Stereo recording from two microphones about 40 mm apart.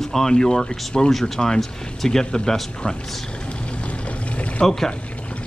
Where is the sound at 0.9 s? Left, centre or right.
Left.